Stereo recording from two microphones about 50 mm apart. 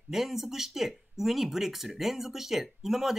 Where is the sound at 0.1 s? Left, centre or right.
Centre.